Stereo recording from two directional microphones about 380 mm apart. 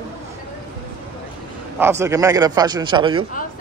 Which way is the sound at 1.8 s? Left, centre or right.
Centre.